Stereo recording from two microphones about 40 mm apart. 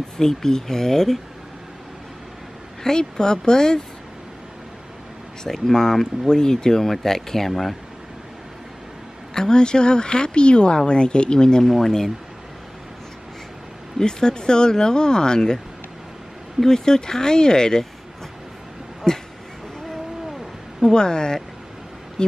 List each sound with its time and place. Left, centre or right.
0.2 s speech: centre
2.8 s speech: centre
5.4 s speech: centre
9.3 s speech: centre
11.6 s speech: centre
13.9 s speech: centre
16.6 s speech: centre
19.1 s a sound: centre
20.9 s speech: centre